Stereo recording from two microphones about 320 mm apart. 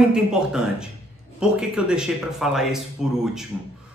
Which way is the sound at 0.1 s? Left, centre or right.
Centre.